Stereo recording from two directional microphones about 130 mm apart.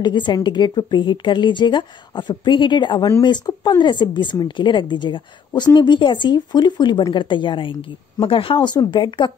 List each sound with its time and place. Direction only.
0.0 s speech: 35° left (ahead or behind)